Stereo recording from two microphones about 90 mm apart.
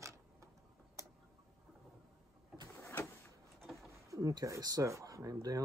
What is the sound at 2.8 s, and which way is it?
Vehicle, 25° left (ahead or behind).